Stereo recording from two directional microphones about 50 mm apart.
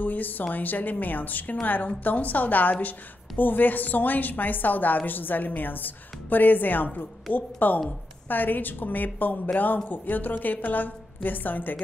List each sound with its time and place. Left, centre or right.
0.0 s a woman's voice: left